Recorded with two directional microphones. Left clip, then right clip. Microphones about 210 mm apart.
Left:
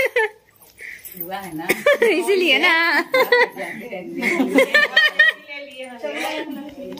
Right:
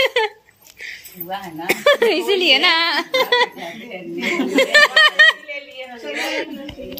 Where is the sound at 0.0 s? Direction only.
Centre (ahead or behind).